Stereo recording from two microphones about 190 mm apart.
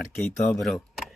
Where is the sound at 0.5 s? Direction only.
Centre (ahead or behind).